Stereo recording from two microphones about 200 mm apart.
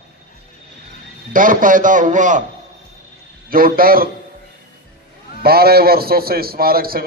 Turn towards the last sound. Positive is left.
turn(degrees=-50)  # may be behind; listen again after turning